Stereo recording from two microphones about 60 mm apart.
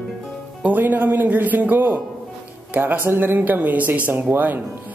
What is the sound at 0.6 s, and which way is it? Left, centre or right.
A man's voice, right.